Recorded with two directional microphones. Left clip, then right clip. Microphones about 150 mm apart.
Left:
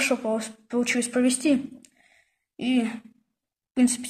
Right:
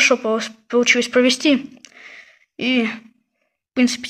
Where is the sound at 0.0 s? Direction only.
25° right (ahead or behind).